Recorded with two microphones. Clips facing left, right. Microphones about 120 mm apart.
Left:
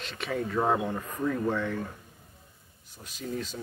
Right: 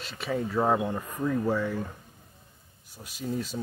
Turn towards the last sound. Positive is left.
turn(degrees=-10)  # may be behind; listen again after turning